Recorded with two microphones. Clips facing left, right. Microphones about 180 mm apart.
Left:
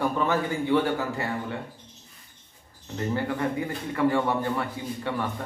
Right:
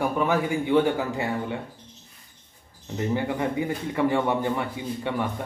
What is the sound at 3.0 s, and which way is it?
A man's voice, 15° right (ahead or behind).